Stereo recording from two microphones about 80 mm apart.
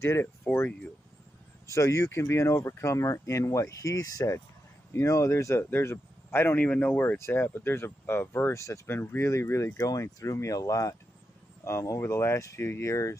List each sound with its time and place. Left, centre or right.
0.0 s speech: left
1.7 s speech: left
6.6 s speech: centre; by 8.8 s left
8.8 s speech: left